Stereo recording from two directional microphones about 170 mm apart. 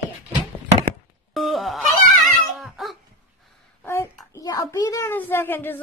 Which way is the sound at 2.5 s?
Centre (ahead or behind).